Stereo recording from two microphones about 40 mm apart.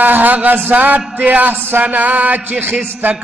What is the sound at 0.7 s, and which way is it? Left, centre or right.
Speech, right.